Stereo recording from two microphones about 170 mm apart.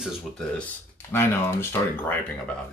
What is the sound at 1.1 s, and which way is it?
Speech, 15° left (ahead or behind).